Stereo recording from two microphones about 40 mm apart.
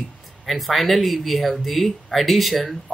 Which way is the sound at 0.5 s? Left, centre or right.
Centre.